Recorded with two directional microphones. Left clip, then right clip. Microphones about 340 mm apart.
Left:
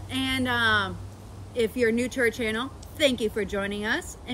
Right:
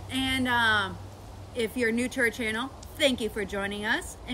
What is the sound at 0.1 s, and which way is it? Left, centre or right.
Speech, centre.